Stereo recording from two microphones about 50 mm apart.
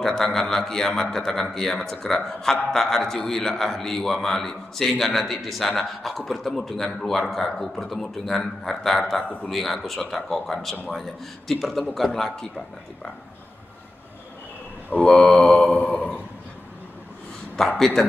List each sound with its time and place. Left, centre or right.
0.0 s a man's voice: centre
15.0 s speech: centre
15.6 s a sound: left
17.6 s speech: centre